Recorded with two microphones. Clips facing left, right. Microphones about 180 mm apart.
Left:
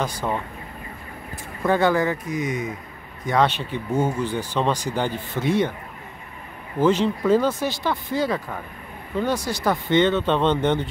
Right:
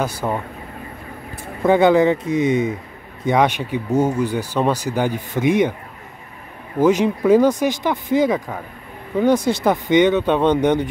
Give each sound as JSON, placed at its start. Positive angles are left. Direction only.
{"t": 0.0, "sound": "speech", "side_deg": -10}
{"t": 1.6, "sound": "speech", "side_deg": -20}
{"t": 3.3, "sound": "speech", "side_deg": -15}
{"t": 6.8, "sound": "speech", "side_deg": -15}